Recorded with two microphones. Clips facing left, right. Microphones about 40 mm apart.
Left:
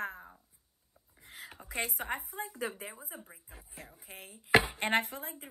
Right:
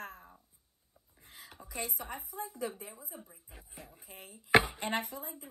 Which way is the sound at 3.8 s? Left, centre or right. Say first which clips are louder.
Left 2 dB; left.